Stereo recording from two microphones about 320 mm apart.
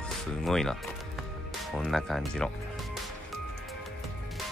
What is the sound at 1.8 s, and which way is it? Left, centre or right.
Speech, centre.